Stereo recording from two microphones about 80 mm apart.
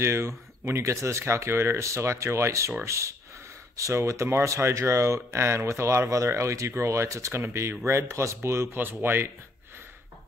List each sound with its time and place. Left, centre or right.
0.0 s speech: right